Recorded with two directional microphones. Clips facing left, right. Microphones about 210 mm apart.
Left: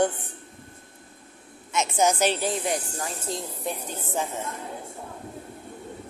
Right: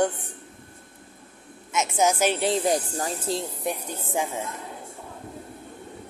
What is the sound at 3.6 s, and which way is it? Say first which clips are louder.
Speech: right 2 dB; 15° right (ahead or behind).